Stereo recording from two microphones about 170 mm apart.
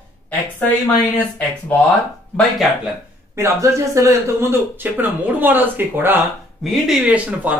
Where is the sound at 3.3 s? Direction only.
15° right (ahead or behind).